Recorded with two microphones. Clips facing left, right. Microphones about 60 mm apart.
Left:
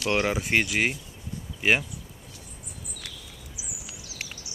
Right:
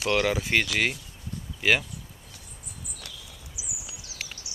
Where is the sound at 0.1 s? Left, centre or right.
Centre.